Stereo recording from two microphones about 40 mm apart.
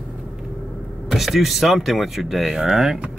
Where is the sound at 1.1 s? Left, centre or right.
Centre.